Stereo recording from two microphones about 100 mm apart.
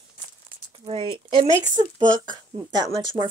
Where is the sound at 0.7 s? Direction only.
60° right (ahead or behind).